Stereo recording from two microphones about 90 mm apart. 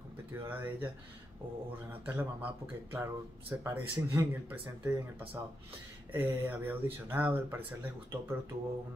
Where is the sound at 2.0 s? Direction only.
20° right (ahead or behind).